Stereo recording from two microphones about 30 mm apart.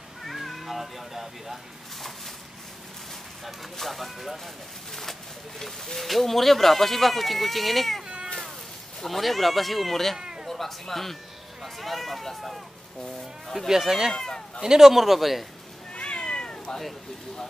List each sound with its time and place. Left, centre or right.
0.5 s cat: centre
3.7 s speech: centre
5.9 s speech: centre
9.0 s speech: centre
10.1 s cat: right
10.5 s speech: centre
13.7 s a man's voice: centre
14.1 s speech: left
14.6 s a man's voice: centre
15.9 s cat: left